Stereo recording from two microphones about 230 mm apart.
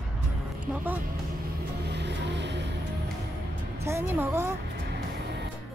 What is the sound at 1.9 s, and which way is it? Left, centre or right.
Music, right.